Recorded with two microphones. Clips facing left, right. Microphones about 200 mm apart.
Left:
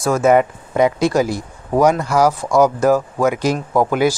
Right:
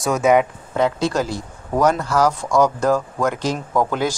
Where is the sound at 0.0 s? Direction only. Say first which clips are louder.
Left 2 dB; centre (ahead or behind).